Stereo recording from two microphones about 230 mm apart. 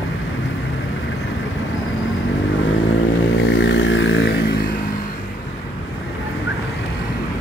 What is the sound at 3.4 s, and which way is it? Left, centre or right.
Vehicle, left.